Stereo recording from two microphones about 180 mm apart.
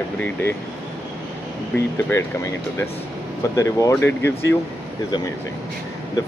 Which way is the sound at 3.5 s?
15° left (ahead or behind).